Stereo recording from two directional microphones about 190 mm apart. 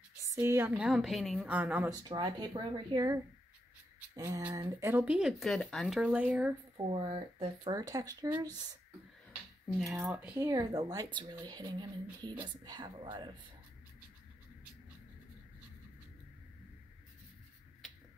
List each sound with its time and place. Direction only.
0.3 s a woman's voice: 15° right (ahead or behind)
2.0 s speech: 20° right (ahead or behind)
4.1 s a sound: 20° right (ahead or behind)
4.4 s speech: 15° right (ahead or behind)
6.9 s speech: 30° right (ahead or behind)
9.9 s a woman's voice: 10° right (ahead or behind)